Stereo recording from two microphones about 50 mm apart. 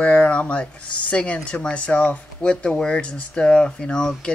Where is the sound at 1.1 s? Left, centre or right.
Left.